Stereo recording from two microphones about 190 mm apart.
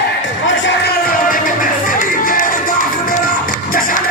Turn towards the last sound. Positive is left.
turn(degrees=45)  # may be behind; listen again after turning